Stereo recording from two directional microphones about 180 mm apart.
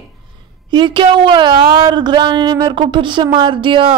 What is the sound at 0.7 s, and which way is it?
A woman's voice, 25° right (ahead or behind).